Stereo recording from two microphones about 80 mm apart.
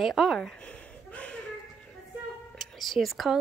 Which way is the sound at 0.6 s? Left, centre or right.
Centre.